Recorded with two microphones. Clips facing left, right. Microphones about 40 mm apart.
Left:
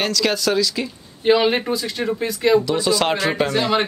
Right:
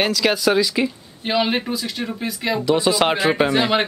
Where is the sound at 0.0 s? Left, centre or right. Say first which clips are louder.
Right 2 dB; centre.